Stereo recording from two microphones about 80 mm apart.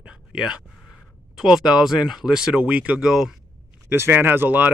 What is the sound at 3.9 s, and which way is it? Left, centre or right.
Speech, right.